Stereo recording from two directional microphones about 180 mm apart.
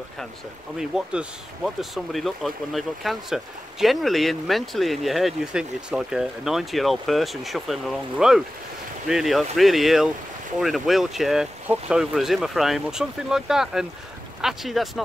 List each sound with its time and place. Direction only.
0.7 s speech: 5° right (ahead or behind)